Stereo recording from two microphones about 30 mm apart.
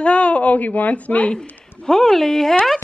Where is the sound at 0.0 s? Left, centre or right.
Left.